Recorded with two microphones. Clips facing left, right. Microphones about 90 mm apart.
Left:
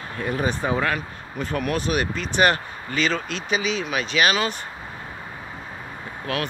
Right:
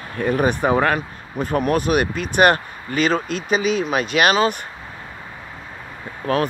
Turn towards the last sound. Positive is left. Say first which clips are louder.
# right 7 dB
turn(degrees=-40)  # may be behind; listen again after turning